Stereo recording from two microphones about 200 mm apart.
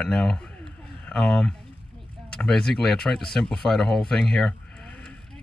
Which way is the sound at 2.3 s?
5° left (ahead or behind).